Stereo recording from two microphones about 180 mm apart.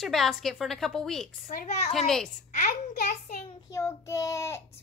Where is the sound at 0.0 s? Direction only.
Centre (ahead or behind).